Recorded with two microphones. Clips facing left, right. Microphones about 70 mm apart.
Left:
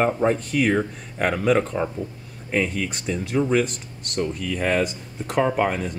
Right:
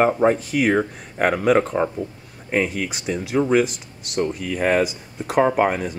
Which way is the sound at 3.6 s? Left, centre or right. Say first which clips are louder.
Right 3 dB; centre.